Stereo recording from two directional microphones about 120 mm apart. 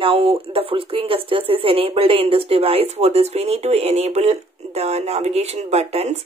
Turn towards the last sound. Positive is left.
turn(degrees=-65)  # may be behind; listen again after turning